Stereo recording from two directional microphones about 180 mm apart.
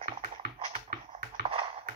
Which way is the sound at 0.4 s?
60° right (ahead or behind).